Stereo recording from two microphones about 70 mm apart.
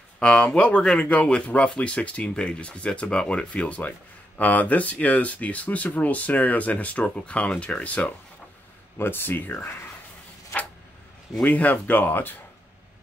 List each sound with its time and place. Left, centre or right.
0.2 s speech: centre
8.9 s speech: left
11.4 s speech: left